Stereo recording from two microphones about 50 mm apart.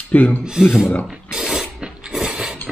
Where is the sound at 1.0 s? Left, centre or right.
Centre.